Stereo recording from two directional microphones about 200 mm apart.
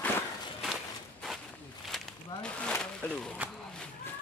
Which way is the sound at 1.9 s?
Centre (ahead or behind).